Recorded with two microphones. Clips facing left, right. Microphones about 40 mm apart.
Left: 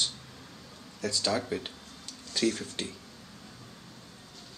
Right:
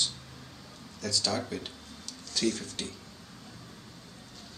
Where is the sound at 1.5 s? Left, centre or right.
Centre.